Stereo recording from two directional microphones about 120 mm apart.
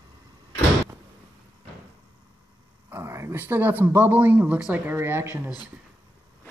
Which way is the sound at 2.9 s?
20° right (ahead or behind).